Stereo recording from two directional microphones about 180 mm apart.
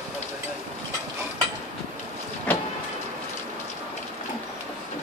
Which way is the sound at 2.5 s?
10° left (ahead or behind).